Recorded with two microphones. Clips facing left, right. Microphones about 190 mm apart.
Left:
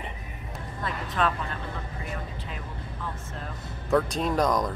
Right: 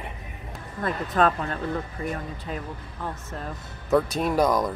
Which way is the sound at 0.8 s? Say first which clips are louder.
Right 5 dB; 45° right (ahead or behind).